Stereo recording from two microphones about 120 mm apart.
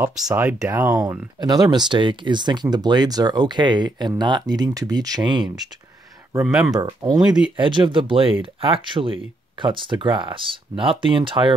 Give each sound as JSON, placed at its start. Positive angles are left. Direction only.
{"t": 0.3, "sound": "speech", "side_deg": -10}
{"t": 0.7, "sound": "speech", "side_deg": -30}
{"t": 6.4, "sound": "speech", "side_deg": -10}
{"t": 6.7, "sound": "speech", "side_deg": -35}
{"t": 7.2, "sound": "speech", "side_deg": -5}
{"t": 7.5, "sound": "speech", "side_deg": -45}